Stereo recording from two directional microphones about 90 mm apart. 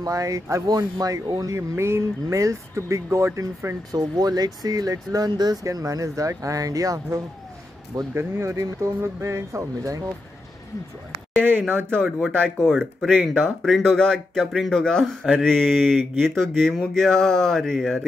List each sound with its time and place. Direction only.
0.0 s speech: 40° right (ahead or behind)
3.9 s speech: 45° right (ahead or behind)
8.1 s speech: 30° right (ahead or behind)
11.7 s speech: 25° right (ahead or behind)
12.4 s speech: 5° left (ahead or behind)